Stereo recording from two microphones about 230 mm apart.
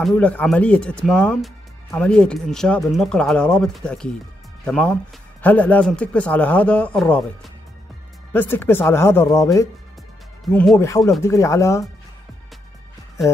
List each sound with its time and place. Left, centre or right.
0.0 s speech: centre